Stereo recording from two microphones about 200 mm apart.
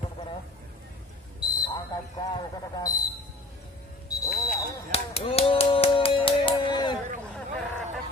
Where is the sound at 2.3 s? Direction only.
20° left (ahead or behind).